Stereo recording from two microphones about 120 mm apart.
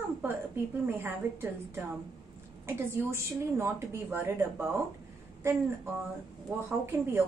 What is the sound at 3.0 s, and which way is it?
A woman's voice, 20° right (ahead or behind).